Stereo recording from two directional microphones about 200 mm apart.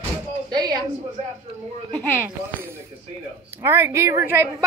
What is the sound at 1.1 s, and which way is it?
Speech, 35° right (ahead or behind).